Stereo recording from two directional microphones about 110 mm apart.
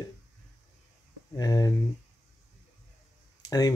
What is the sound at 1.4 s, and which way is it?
Speech, 35° left (ahead or behind).